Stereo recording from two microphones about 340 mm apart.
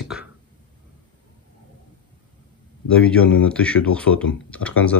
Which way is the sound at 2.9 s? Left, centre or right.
Centre.